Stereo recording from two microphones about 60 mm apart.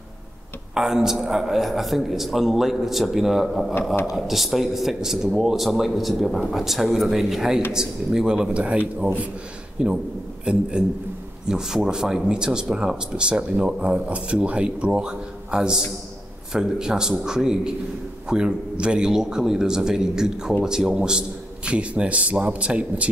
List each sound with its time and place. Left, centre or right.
0.7 s a man's voice: centre